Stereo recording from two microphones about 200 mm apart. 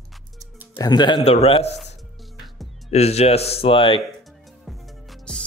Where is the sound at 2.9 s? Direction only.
30° left (ahead or behind).